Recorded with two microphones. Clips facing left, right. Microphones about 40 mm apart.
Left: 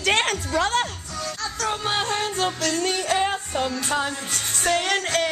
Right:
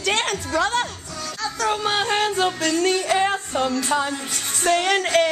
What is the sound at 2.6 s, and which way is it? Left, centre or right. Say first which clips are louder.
Music: right 3 dB; right.